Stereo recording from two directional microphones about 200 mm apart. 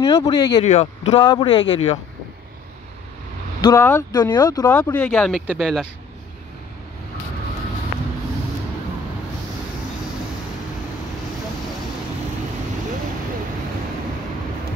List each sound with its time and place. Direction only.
0.0 s speech: 20° left (ahead or behind)
0.6 s a man's voice: 35° left (ahead or behind)
1.1 s speech: 20° left (ahead or behind)
3.6 s speech: 15° left (ahead or behind)
4.9 s speech: 5° left (ahead or behind)